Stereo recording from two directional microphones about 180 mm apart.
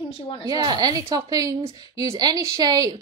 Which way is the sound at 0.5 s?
25° right (ahead or behind).